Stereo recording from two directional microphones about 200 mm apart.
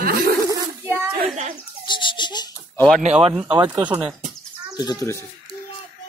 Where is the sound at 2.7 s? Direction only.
5° left (ahead or behind).